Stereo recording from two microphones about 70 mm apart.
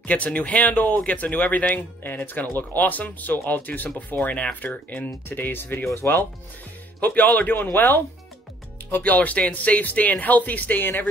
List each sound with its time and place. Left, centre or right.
0.0 s speech: left